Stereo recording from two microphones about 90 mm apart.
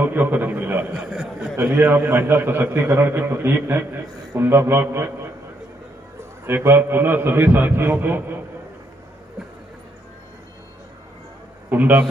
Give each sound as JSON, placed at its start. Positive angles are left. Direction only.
{"t": 0.0, "sound": "a man's voice", "side_deg": -25}
{"t": 0.9, "sound": "speech", "side_deg": -5}
{"t": 1.6, "sound": "a man's voice", "side_deg": -25}
{"t": 6.4, "sound": "a man's voice", "side_deg": -25}
{"t": 11.7, "sound": "a man's voice", "side_deg": -20}